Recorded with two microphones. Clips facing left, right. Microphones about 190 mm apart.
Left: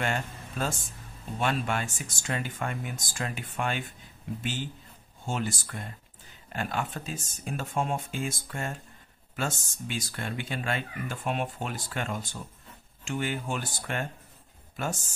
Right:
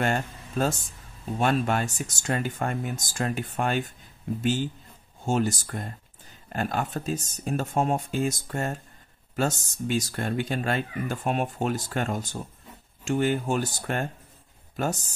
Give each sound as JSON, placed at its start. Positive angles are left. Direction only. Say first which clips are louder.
{"t": 0.0, "sound": "speech", "louder": "right 5 dB", "side_deg": -40}